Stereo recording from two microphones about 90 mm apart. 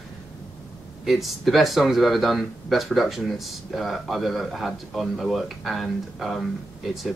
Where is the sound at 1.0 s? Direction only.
Centre (ahead or behind).